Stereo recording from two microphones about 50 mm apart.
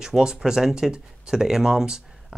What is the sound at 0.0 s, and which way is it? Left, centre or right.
Speech, centre.